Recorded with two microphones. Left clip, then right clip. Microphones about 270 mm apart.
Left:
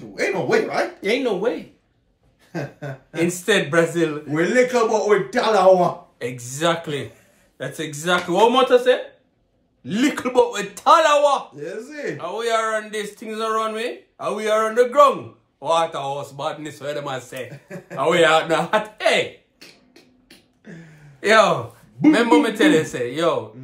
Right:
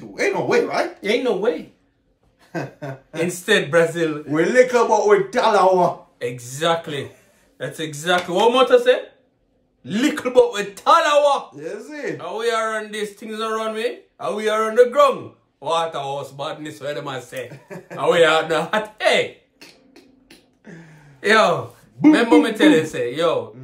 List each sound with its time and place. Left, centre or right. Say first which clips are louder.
0.1 s speech: right 1 dB; centre
1.0 s speech: right 2 dB; centre
2.5 s a sound: right 1 dB; centre
3.3 s speech: right 1 dB; centre
4.3 s a man's voice: right 4 dB; centre
6.1 s speech: right 1 dB; centre
11.5 s a man's voice: even; centre
12.2 s speech: even; centre
19.9 s beatboxing: right 1 dB; centre
21.2 s speech: even; centre